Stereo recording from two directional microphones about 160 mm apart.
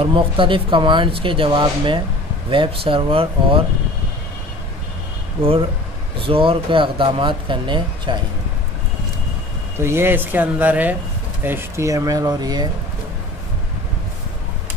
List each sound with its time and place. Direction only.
0.0 s speech: 30° right (ahead or behind)
5.4 s speech: 35° right (ahead or behind)
9.8 s speech: 15° right (ahead or behind)